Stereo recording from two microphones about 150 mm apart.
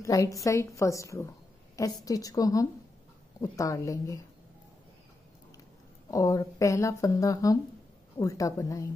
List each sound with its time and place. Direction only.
0.0 s speech: 20° left (ahead or behind)
6.0 s speech: 20° left (ahead or behind)